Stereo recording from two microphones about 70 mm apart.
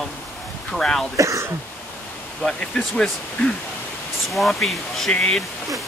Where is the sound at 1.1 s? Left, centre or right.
Right.